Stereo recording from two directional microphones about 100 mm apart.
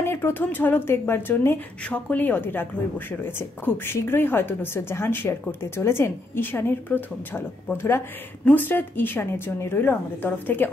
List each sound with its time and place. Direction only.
0.0 s speech: 25° left (ahead or behind)